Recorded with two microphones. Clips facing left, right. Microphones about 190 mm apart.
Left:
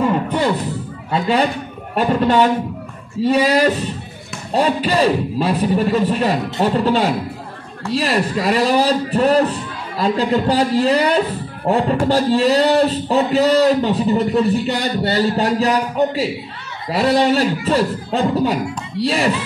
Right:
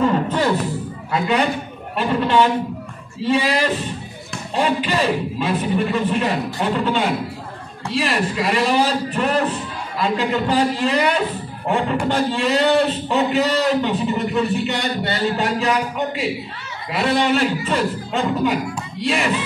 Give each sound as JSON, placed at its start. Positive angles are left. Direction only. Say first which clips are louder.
{"t": 0.0, "sound": "music", "louder": "left 1 dB", "side_deg": 15}
{"t": 1.1, "sound": "speech", "louder": "left 2 dB", "side_deg": 35}